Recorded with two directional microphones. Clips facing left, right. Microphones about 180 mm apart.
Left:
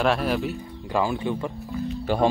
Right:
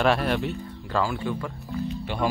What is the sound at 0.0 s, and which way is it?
Speech, centre (ahead or behind).